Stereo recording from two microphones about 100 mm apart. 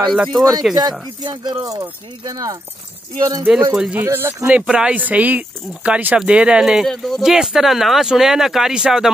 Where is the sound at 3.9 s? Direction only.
25° right (ahead or behind).